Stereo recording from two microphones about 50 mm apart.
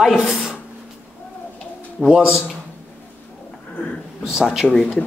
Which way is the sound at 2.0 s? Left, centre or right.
Centre.